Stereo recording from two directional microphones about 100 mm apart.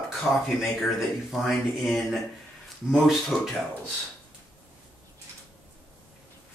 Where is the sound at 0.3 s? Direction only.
5° right (ahead or behind).